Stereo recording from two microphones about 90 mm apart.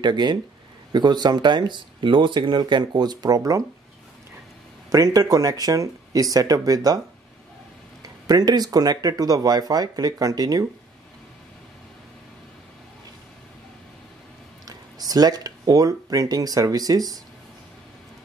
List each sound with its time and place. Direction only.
0.0 s speech: 55° right (ahead or behind)
4.8 s speech: 45° right (ahead or behind)
8.0 s speech: 45° right (ahead or behind)
14.7 s speech: 45° right (ahead or behind)